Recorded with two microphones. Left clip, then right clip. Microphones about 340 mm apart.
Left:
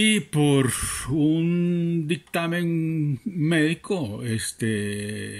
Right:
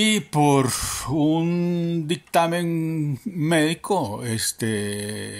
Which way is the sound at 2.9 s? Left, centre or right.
Right.